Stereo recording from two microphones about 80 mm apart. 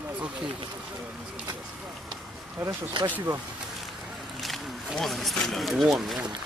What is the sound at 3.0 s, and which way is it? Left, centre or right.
Speech, right.